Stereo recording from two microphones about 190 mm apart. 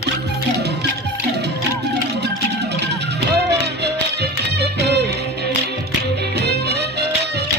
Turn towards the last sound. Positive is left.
turn(degrees=-60)  # may be behind; listen again after turning